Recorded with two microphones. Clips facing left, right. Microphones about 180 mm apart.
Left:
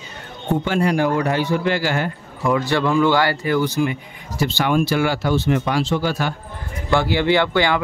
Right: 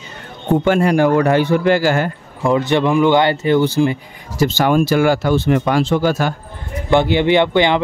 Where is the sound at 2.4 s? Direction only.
25° right (ahead or behind); by 6.3 s 45° right (ahead or behind).